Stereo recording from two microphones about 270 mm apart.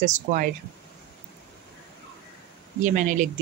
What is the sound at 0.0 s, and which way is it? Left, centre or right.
Speech, right.